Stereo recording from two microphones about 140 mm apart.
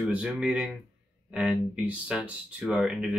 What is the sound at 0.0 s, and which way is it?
Speech, 5° right (ahead or behind).